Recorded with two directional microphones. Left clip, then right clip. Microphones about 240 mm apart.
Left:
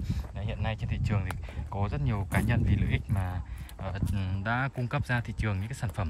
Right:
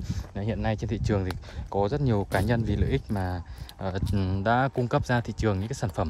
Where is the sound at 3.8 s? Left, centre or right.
Right.